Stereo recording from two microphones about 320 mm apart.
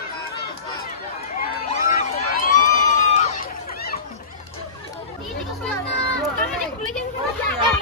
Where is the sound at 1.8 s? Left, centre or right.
Left.